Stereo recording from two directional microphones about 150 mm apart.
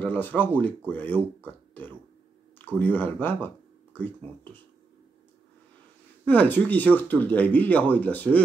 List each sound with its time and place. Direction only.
0.0 s speech: 10° left (ahead or behind)
6.2 s speech: 10° left (ahead or behind)